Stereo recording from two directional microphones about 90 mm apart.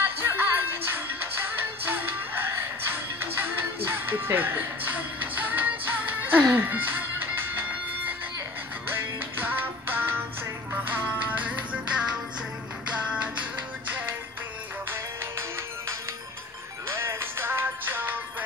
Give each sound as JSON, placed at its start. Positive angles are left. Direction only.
{"t": 0.0, "sound": "music", "side_deg": -20}
{"t": 8.8, "sound": "music", "side_deg": -20}
{"t": 16.9, "sound": "music", "side_deg": -30}